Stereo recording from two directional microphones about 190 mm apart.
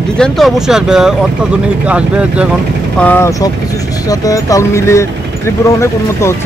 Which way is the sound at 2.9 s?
10° left (ahead or behind).